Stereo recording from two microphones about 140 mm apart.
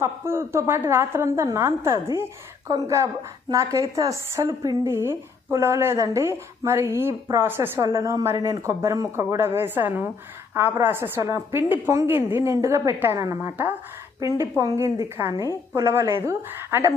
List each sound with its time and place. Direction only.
0.0 s a woman's voice: 20° right (ahead or behind)